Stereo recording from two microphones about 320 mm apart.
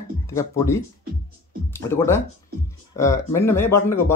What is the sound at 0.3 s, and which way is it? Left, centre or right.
Speech, centre.